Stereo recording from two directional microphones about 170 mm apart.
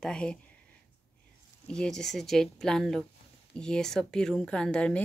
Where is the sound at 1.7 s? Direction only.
5° left (ahead or behind).